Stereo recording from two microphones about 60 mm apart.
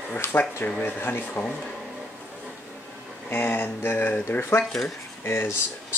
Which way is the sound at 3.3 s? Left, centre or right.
Left.